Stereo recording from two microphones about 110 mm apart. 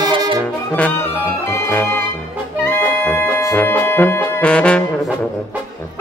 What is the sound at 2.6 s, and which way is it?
Music, 20° left (ahead or behind).